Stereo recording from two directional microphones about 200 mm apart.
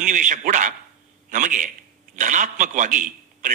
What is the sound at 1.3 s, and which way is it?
A man's voice, 40° right (ahead or behind).